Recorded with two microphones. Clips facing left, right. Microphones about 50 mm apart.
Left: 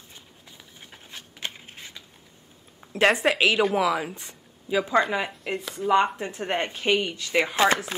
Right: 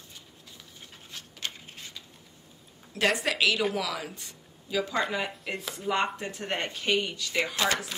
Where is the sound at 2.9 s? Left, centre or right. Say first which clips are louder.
Left 6 dB; left.